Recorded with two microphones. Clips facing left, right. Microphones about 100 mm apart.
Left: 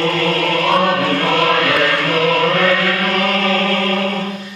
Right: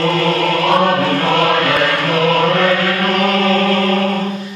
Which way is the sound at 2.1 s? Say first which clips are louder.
Right 1 dB; 20° right (ahead or behind).